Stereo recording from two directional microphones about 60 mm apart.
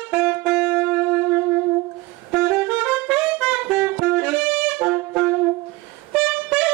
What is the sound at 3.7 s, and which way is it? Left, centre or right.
Music, centre.